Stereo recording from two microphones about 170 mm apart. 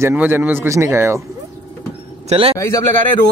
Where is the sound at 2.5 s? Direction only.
20° left (ahead or behind).